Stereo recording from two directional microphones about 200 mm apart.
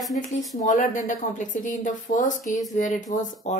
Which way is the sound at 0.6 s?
40° left (ahead or behind).